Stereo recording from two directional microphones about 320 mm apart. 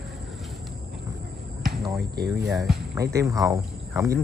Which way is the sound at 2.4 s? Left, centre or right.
Centre.